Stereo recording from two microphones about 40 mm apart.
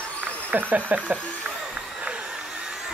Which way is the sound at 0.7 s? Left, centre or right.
Right.